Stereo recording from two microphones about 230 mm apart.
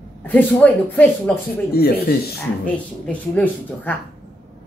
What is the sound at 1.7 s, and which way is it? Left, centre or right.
Speech, left.